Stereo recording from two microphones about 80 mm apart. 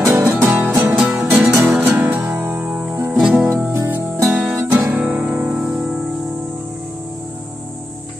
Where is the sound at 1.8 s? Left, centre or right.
Right.